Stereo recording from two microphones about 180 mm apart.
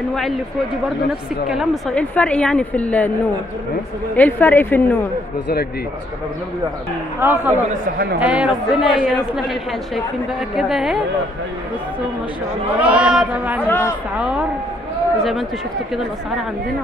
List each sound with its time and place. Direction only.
1.5 s a woman's voice: centre (ahead or behind)
4.2 s a woman's voice: 10° left (ahead or behind)
7.2 s speech: 10° right (ahead or behind)
7.7 s speech: 60° right (ahead or behind)
8.2 s speech: 5° right (ahead or behind)
12.7 s speech: 5° right (ahead or behind)
13.7 s a woman's voice: 15° left (ahead or behind)
14.1 s speech: 5° right (ahead or behind)
15.9 s speech: centre (ahead or behind)